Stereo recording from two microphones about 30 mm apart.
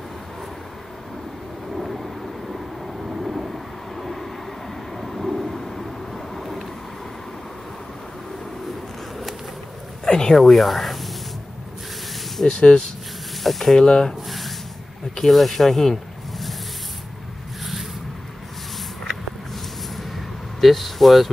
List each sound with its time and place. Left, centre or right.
1.8 s vehicle: centre
10.0 s speech: left
10.3 s speech: centre
12.4 s speech: left
13.4 s speech: centre
13.7 s speech: left
15.2 s speech: centre
20.6 s speech: centre